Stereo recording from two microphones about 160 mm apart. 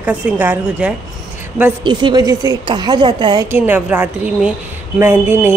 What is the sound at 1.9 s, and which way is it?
A woman's voice, 25° right (ahead or behind).